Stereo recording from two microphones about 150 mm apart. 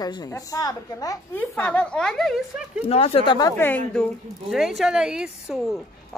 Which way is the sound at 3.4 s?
25° left (ahead or behind).